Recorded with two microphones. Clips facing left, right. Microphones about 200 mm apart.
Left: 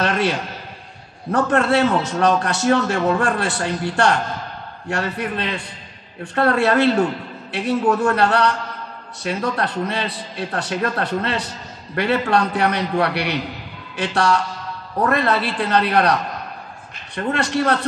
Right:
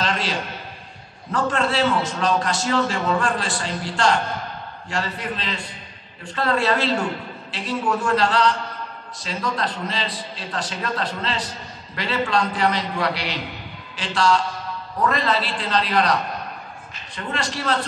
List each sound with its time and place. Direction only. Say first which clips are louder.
1.3 s a man's voice: left 5 dB; 60° left (ahead or behind)
17.1 s a man's voice: left 7 dB; 60° left (ahead or behind)